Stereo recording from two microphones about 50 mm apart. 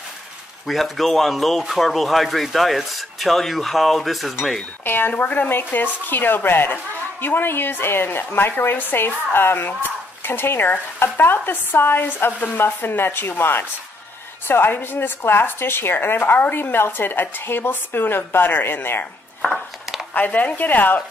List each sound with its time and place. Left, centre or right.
0.7 s speech: centre
4.8 s speech: left
20.2 s speech: left